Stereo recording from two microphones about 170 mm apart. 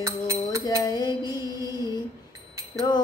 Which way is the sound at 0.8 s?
25° left (ahead or behind).